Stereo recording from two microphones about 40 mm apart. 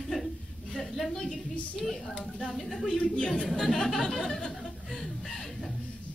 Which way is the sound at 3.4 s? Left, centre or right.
Centre.